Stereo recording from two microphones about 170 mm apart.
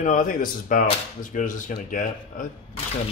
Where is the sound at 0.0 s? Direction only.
50° left (ahead or behind).